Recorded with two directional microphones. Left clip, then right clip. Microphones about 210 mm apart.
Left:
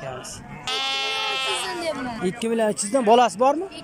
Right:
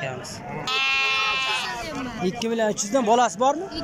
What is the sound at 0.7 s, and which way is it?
Sheep, 30° left (ahead or behind).